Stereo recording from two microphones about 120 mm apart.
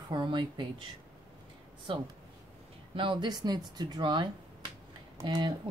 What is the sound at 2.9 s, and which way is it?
Speech, 45° right (ahead or behind).